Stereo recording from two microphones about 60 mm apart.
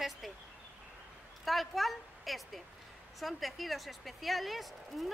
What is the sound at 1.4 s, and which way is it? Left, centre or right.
A woman's voice, centre.